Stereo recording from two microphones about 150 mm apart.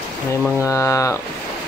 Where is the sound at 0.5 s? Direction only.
20° left (ahead or behind).